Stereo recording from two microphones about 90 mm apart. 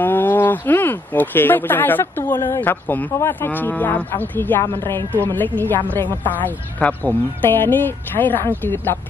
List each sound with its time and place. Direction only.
0.0 s speech: 20° left (ahead or behind)